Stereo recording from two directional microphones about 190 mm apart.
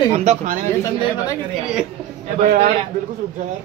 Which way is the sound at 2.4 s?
55° right (ahead or behind).